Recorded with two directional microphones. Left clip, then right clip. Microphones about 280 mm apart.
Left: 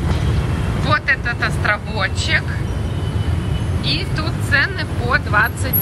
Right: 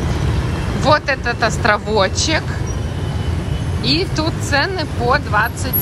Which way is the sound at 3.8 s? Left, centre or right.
Centre.